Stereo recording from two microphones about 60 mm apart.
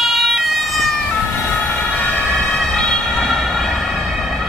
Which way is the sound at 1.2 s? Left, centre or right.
Centre.